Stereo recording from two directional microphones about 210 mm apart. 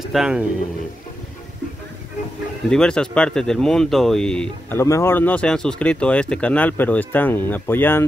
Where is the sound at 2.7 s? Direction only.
5° left (ahead or behind).